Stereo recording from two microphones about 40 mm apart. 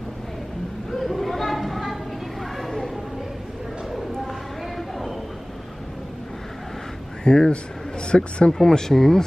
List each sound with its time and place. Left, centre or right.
0.9 s chatter: centre
4.7 s a sound: centre
7.2 s a man's voice: centre
8.5 s speech: centre